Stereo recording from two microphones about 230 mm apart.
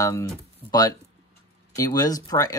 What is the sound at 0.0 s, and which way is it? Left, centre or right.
Speech, centre.